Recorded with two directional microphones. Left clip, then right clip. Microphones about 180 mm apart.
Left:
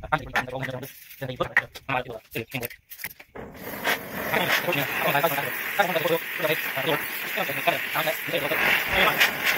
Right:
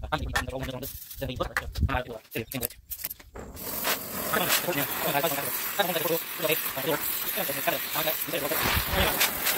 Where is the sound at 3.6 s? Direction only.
20° right (ahead or behind).